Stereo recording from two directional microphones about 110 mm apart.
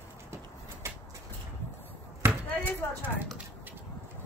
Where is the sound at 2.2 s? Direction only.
20° right (ahead or behind).